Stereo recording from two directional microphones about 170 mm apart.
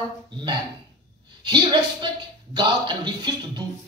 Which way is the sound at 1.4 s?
30° right (ahead or behind).